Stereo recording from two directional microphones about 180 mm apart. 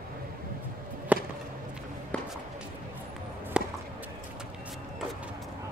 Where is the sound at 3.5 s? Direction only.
5° right (ahead or behind).